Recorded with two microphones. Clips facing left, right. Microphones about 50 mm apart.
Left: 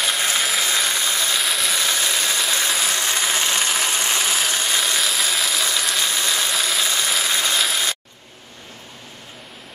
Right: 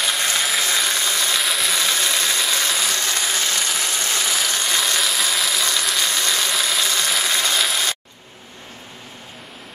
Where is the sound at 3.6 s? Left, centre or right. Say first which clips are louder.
Left 2 dB; centre.